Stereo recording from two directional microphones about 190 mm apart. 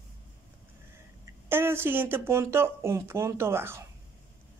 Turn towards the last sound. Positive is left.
turn(degrees=-10)  # may be behind; listen again after turning